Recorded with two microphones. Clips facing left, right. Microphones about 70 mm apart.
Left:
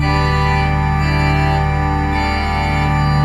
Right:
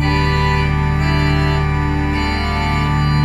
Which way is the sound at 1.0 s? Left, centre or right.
Centre.